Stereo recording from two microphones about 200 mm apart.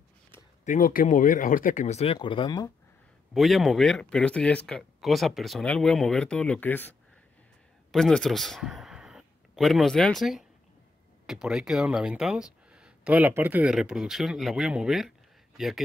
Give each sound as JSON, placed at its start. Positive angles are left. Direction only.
{"t": 0.7, "sound": "speech", "side_deg": 45}
{"t": 3.3, "sound": "speech", "side_deg": 0}
{"t": 7.9, "sound": "a man's voice", "side_deg": 0}